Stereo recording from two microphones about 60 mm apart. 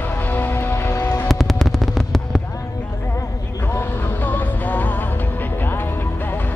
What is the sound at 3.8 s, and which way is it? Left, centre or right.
Music, left.